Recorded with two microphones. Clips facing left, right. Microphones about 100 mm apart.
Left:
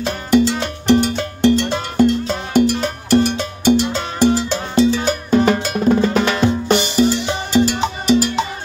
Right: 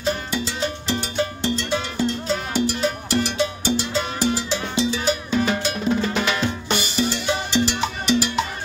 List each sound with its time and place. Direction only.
0.0 s music: 65° left (ahead or behind); by 8.3 s 40° left (ahead or behind)